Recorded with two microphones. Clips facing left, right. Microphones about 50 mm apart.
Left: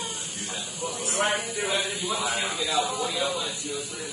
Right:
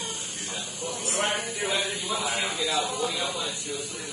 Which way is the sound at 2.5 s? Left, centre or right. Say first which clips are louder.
Left 1 dB; centre.